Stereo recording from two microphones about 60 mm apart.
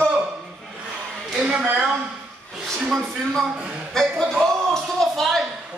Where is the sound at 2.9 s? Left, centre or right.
Centre.